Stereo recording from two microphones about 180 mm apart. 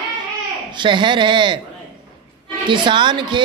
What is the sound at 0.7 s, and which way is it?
Speech, 25° right (ahead or behind).